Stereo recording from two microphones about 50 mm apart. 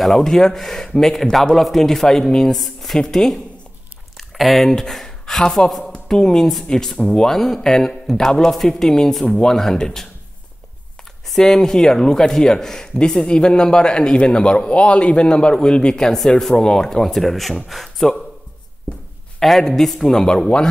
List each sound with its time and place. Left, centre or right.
0.0 s speech: centre
11.2 s speech: centre
19.4 s speech: centre